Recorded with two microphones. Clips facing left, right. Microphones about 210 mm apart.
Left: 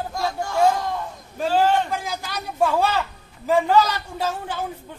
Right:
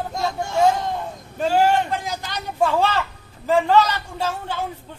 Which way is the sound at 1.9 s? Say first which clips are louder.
Right 1 dB; 10° left (ahead or behind).